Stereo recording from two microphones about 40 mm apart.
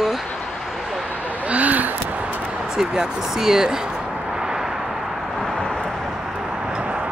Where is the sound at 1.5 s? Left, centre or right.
Right.